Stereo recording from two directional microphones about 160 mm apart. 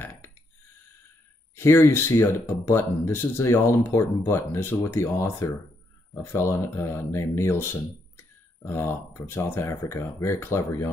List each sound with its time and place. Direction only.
0.0 s a sound: 15° left (ahead or behind)
1.5 s speech: 15° left (ahead or behind)
8.6 s speech: 15° left (ahead or behind)